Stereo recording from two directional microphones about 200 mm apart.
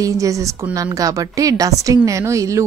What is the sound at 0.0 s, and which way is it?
A woman's voice, 15° right (ahead or behind).